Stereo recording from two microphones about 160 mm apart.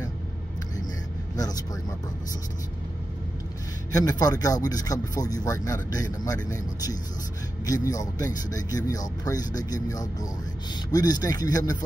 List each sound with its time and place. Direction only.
1.3 s speech: 25° left (ahead or behind)
3.9 s speech: 20° left (ahead or behind)